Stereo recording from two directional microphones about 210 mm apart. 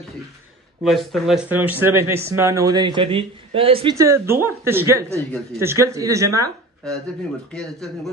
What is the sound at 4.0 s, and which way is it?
Speech, 15° right (ahead or behind).